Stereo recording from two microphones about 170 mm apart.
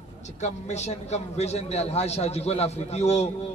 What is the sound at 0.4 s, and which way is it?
A man's voice, 40° left (ahead or behind).